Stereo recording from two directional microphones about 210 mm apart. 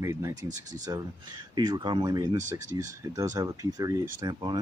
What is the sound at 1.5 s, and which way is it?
Speech, 20° right (ahead or behind).